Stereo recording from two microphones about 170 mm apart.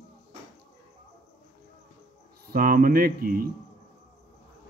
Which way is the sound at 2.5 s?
55° right (ahead or behind).